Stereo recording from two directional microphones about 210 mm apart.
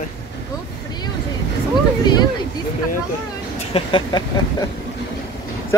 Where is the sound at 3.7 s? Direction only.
25° left (ahead or behind).